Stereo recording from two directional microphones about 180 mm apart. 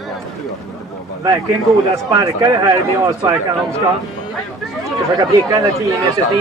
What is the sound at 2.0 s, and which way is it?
Speech, 20° right (ahead or behind).